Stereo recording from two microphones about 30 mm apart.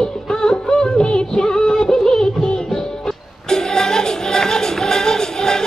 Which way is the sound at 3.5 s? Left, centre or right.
Centre.